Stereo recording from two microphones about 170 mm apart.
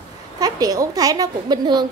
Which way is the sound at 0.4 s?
20° right (ahead or behind).